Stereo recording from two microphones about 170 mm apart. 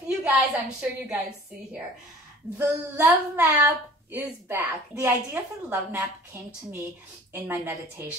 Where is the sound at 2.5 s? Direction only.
10° right (ahead or behind).